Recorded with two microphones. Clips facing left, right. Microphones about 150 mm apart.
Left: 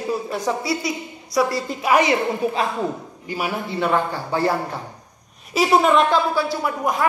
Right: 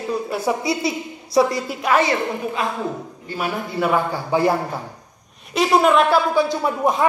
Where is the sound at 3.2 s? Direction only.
10° left (ahead or behind).